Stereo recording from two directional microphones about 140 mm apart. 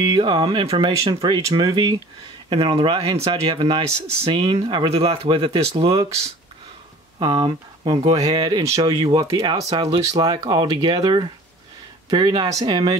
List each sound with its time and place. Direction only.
0.0 s speech: 30° right (ahead or behind)
3.0 s speech: 30° right (ahead or behind); by 6.0 s 45° right (ahead or behind)
7.2 s speech: 35° right (ahead or behind)